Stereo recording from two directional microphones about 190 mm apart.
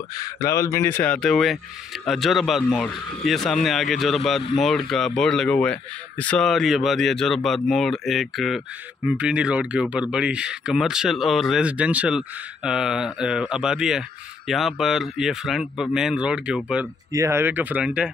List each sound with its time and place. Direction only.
0.2 s speech: 15° left (ahead or behind); by 18.1 s 5° right (ahead or behind)